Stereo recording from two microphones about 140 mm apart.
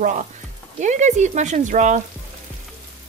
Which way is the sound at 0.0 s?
60° right (ahead or behind).